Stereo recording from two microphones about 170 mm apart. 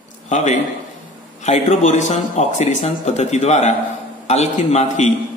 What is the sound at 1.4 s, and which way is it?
Speech, 40° left (ahead or behind).